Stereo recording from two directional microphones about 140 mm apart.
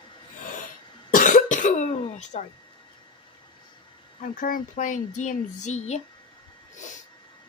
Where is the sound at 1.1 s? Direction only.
65° left (ahead or behind).